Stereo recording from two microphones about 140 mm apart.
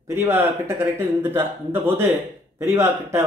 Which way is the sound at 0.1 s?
20° right (ahead or behind).